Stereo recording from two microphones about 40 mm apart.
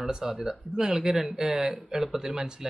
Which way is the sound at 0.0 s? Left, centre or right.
Centre.